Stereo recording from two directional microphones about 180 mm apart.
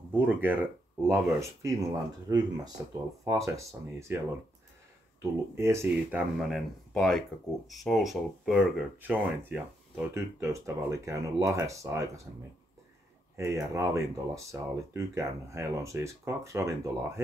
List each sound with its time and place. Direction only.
0.1 s speech: 10° right (ahead or behind)
5.6 s speech: 15° right (ahead or behind)
6.5 s speech: centre (ahead or behind); by 12.1 s 15° right (ahead or behind)
13.4 s speech: 15° right (ahead or behind)